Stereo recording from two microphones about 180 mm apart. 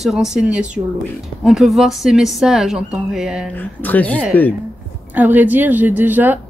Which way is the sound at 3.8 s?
10° left (ahead or behind).